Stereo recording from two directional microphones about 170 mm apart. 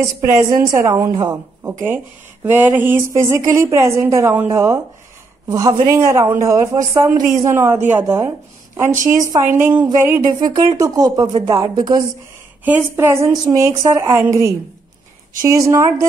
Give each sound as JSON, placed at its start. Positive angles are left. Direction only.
{"t": 0.0, "sound": "speech", "side_deg": -15}
{"t": 2.4, "sound": "a woman's voice", "side_deg": -10}
{"t": 12.6, "sound": "speech", "side_deg": -10}